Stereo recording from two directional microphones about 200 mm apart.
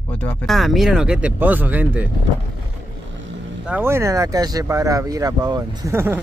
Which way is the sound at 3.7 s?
10° right (ahead or behind).